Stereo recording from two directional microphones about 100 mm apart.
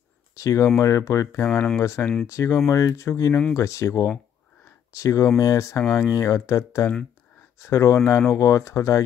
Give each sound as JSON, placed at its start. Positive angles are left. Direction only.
{"t": 0.4, "sound": "speech", "side_deg": 30}